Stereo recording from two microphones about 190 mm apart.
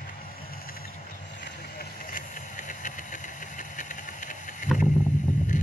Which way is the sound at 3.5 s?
40° left (ahead or behind).